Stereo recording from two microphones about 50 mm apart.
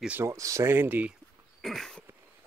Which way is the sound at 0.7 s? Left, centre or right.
Right.